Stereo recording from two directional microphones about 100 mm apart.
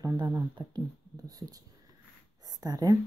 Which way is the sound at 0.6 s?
40° right (ahead or behind).